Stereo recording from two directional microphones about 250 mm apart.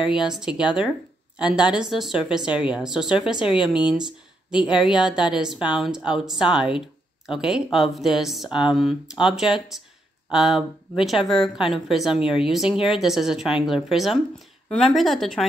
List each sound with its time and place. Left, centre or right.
0.3 s speech: centre
3.3 s speech: centre
3.6 s speech: centre